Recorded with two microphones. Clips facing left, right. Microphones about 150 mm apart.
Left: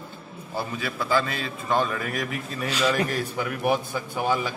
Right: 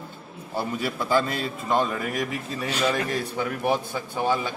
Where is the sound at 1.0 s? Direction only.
20° right (ahead or behind).